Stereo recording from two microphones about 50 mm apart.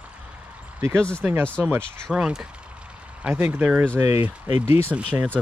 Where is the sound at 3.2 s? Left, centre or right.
Right.